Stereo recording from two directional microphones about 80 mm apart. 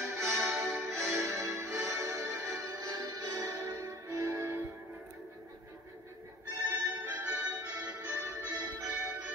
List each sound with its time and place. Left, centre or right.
0.0 s music: right
6.6 s music: right